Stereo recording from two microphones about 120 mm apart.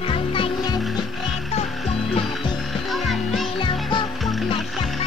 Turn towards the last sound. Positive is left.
turn(degrees=0)  # may be behind; listen again after turning